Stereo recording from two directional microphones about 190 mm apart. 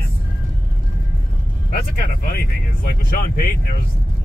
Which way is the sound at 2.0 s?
50° left (ahead or behind).